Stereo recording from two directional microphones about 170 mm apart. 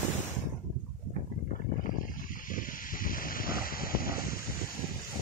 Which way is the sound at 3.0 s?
55° left (ahead or behind).